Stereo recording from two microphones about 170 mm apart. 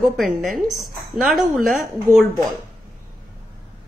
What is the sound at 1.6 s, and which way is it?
Speech, 50° right (ahead or behind).